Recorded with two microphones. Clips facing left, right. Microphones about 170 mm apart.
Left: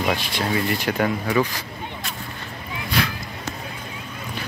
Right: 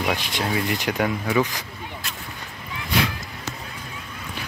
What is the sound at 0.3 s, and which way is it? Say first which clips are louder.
Speech: left 1 dB; 15° right (ahead or behind).